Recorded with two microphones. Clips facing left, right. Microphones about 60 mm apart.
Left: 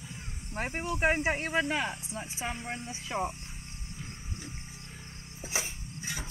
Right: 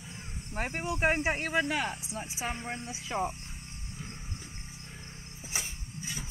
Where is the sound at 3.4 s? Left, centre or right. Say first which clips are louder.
Even; centre.